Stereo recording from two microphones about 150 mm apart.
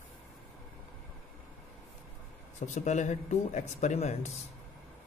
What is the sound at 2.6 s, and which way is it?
Speech, 50° left (ahead or behind).